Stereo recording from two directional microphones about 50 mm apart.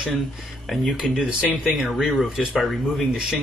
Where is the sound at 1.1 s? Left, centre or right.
Centre.